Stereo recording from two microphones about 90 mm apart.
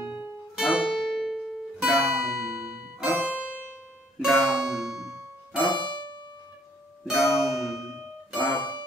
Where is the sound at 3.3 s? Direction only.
15° left (ahead or behind).